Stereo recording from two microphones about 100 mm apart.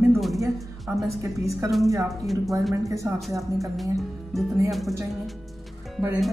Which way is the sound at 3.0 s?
30° right (ahead or behind).